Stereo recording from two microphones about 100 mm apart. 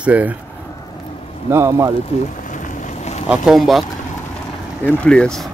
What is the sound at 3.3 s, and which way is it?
Speech, 5° right (ahead or behind).